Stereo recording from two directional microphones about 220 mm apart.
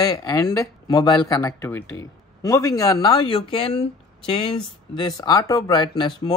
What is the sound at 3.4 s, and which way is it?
Speech, 30° left (ahead or behind).